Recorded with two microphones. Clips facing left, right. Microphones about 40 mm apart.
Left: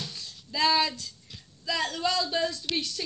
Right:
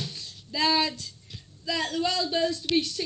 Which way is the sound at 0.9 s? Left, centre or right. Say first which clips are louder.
Even; right.